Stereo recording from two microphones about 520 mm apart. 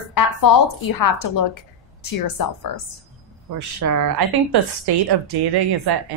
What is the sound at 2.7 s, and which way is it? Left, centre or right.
Speech, left.